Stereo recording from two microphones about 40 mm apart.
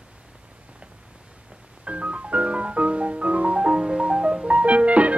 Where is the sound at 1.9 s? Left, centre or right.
Right.